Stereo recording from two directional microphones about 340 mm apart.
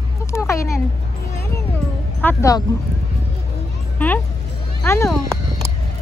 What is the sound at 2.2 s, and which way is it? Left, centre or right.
Speech, centre.